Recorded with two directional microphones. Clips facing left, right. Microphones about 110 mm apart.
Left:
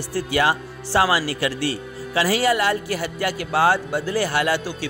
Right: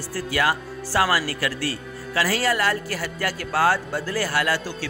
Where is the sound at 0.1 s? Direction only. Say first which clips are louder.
Left 3 dB; 25° left (ahead or behind).